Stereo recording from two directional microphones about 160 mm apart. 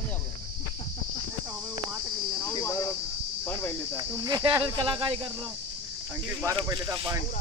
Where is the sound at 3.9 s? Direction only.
20° right (ahead or behind).